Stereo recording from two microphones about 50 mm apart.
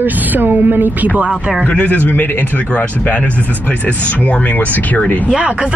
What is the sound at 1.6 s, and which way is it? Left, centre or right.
A man's voice, left.